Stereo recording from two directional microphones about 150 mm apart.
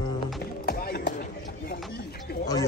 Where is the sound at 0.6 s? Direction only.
90° left.